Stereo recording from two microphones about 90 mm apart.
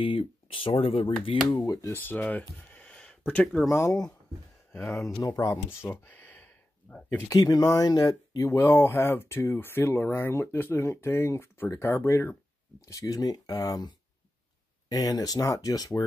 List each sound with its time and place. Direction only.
0.0 s speech: 80° left
1.6 s speech: 40° left (ahead or behind)
2.0 s speech: 20° left (ahead or behind)
3.6 s speech: 35° left (ahead or behind)
4.7 s speech: 20° left (ahead or behind)
5.2 s speech: 40° left (ahead or behind); by 7.2 s 15° left (ahead or behind)
7.2 s speech: 45° left (ahead or behind); by 12.4 s 25° left (ahead or behind)
12.8 s speech: 40° left (ahead or behind)